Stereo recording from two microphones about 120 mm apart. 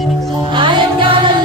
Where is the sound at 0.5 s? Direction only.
45° right (ahead or behind).